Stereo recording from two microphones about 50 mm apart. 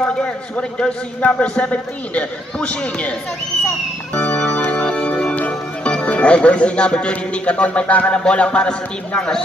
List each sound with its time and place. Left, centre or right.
0.0 s a man's voice: left
4.4 s music: left
7.9 s a man's voice: left